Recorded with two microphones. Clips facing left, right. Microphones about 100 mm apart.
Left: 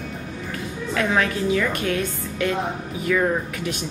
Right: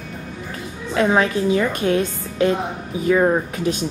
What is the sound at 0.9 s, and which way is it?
A woman's voice, 25° right (ahead or behind).